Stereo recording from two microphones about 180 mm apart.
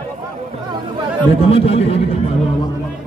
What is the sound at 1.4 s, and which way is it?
Speech, 30° left (ahead or behind).